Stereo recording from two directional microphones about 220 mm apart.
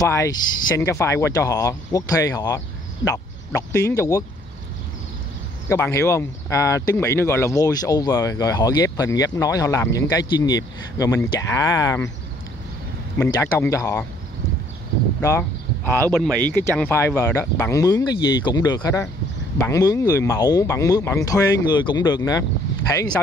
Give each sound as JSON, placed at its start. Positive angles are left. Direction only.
{"t": 0.0, "sound": "speech", "side_deg": 15}
{"t": 3.7, "sound": "speech", "side_deg": 10}
{"t": 5.7, "sound": "speech", "side_deg": 10}
{"t": 13.2, "sound": "speech", "side_deg": 10}
{"t": 15.1, "sound": "speech", "side_deg": 10}